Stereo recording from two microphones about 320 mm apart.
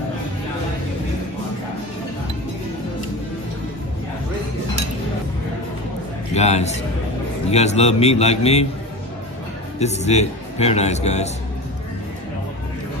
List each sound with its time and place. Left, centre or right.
6.3 s a man's voice: centre
9.8 s a man's voice: left